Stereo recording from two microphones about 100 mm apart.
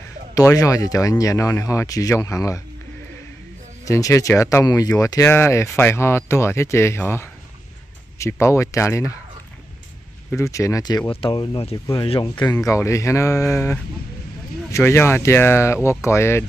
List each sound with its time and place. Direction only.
0.3 s speech: 35° left (ahead or behind)
3.8 s speech: 30° left (ahead or behind)
10.3 s speech: 30° left (ahead or behind)
11.1 s speech: 60° left (ahead or behind)
12.2 s speech: 45° left (ahead or behind)
12.5 s speech: 30° left (ahead or behind)